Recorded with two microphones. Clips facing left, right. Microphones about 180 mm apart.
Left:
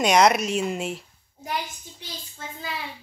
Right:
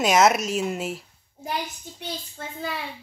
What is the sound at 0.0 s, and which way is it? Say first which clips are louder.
A woman's voice: even; 5° right (ahead or behind).